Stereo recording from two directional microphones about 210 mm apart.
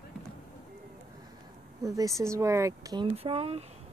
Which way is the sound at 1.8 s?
15° right (ahead or behind).